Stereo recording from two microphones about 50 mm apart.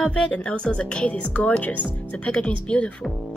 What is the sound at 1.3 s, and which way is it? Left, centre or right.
Speech, left.